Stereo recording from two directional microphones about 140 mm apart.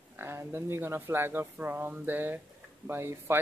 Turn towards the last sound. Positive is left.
turn(degrees=-15)  # may be behind; listen again after turning